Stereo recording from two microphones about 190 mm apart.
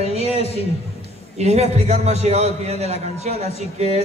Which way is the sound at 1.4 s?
35° right (ahead or behind).